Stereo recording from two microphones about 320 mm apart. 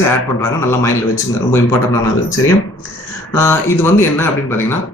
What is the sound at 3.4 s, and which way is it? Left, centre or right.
Speech, centre.